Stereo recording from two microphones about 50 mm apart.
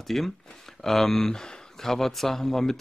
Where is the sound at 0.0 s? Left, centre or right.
Centre.